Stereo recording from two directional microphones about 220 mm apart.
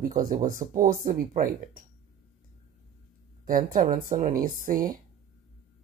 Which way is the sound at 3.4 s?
40° right (ahead or behind).